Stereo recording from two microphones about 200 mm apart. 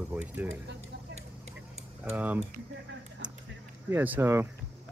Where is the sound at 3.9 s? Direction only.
10° right (ahead or behind).